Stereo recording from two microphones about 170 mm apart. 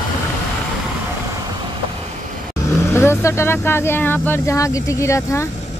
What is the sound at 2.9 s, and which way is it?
Speech, 15° left (ahead or behind).